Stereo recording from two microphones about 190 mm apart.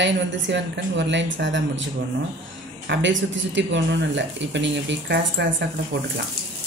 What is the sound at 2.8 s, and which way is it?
Speech, 70° right (ahead or behind).